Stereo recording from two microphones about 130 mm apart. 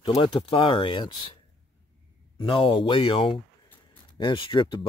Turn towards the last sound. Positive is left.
turn(degrees=40)  # may be behind; listen again after turning